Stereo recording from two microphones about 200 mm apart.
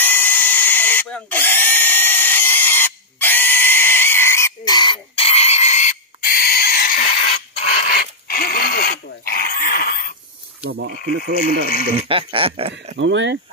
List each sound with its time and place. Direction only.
0.0 s drill: 10° left (ahead or behind); by 7.1 s 45° left (ahead or behind)
7.2 s dog: 35° left (ahead or behind)
7.9 s dog: 50° left (ahead or behind)
10.7 s speech: 50° right (ahead or behind)
11.9 s speech: 25° right (ahead or behind)
12.9 s speech: 65° right (ahead or behind)